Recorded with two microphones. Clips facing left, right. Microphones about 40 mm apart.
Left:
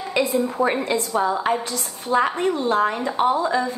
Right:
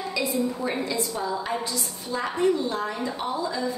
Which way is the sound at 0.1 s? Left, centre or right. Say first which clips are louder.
Left 6 dB; left.